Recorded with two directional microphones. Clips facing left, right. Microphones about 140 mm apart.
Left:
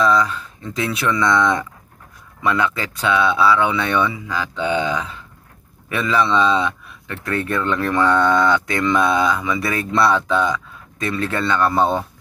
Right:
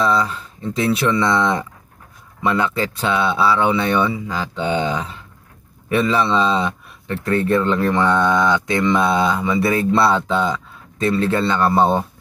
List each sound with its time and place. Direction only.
0.0 s speech: 30° right (ahead or behind)